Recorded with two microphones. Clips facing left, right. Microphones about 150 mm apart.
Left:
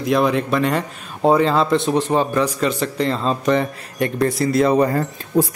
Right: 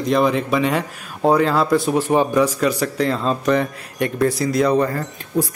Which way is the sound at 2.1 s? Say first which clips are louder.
Right 2 dB; 15° right (ahead or behind).